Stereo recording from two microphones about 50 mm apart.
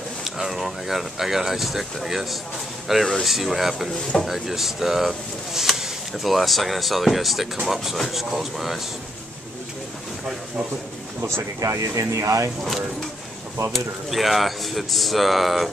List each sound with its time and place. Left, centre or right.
0.2 s speech: centre
11.2 s speech: right
13.7 s speech: centre